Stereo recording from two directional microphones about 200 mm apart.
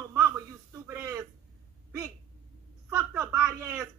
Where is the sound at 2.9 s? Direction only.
15° right (ahead or behind).